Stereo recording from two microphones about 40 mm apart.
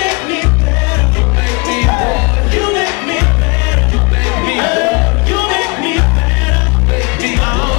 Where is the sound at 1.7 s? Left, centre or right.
Centre.